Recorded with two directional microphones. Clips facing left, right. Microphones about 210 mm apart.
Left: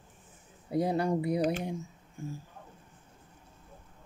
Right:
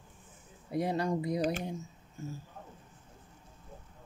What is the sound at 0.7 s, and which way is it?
Speech, 30° left (ahead or behind).